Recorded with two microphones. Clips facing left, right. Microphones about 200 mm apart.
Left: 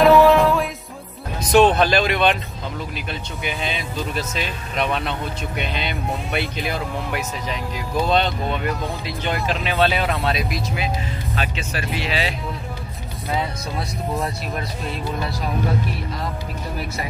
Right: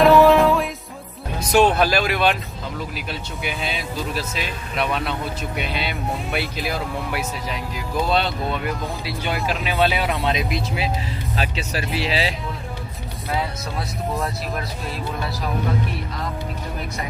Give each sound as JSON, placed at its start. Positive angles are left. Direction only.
{"t": 0.0, "sound": "music", "side_deg": 0}
{"t": 1.8, "sound": "speech", "side_deg": -5}
{"t": 11.3, "sound": "speech", "side_deg": -35}
{"t": 14.1, "sound": "speech", "side_deg": 0}